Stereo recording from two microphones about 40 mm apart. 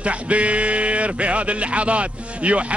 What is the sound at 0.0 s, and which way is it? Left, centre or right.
Speech, right.